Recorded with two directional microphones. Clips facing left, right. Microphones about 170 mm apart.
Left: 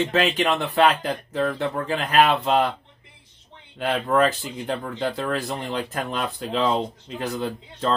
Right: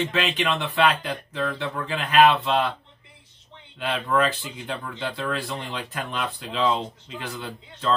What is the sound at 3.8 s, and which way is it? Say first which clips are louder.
Speech: left 3 dB; 45° left (ahead or behind).